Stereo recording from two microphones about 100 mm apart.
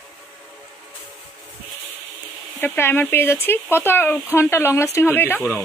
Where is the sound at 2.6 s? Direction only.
20° left (ahead or behind).